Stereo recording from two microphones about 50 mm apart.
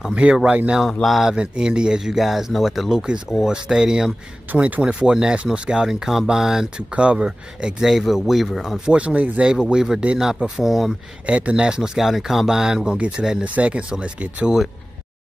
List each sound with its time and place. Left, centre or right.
0.1 s speech: right
1.0 s speech: centre
1.3 s speech: centre
4.6 s speech: right
4.8 s speech: centre
6.9 s speech: right
7.8 s speech: centre
8.7 s speech: centre
9.5 s speech: centre
10.6 s speech: centre
11.2 s speech: right